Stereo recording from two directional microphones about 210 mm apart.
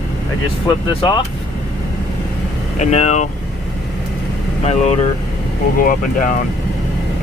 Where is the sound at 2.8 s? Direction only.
35° left (ahead or behind).